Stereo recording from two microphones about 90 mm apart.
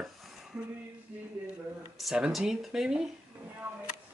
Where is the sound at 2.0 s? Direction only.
5° right (ahead or behind).